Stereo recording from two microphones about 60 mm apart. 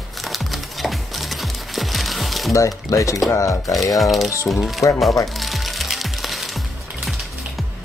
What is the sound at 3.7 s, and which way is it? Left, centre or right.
Speech, centre.